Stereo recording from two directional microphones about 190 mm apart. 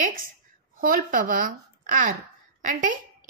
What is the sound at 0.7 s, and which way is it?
A child's voice, 45° right (ahead or behind).